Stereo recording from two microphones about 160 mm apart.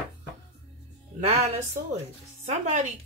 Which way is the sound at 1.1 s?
45° right (ahead or behind).